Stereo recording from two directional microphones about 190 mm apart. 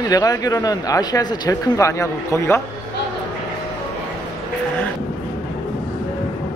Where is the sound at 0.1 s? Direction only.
20° left (ahead or behind).